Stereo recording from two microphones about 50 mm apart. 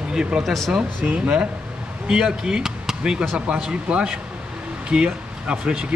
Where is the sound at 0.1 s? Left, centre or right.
Centre.